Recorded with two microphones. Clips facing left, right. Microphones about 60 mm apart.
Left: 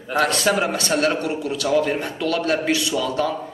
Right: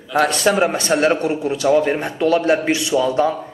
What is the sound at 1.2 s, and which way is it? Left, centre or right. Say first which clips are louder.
A man's voice: right 5 dB; right.